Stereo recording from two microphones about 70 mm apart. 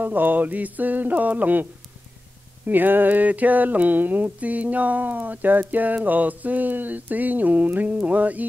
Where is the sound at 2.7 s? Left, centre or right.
Right.